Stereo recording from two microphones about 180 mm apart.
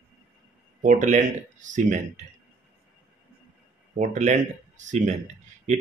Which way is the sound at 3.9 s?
45° right (ahead or behind).